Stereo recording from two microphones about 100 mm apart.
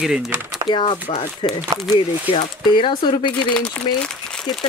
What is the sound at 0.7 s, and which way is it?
Speech, 55° left (ahead or behind).